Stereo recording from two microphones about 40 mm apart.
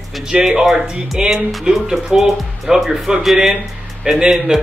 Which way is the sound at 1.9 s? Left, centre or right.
Centre.